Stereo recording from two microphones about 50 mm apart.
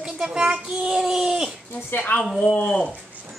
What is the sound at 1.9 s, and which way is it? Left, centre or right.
Speech, left.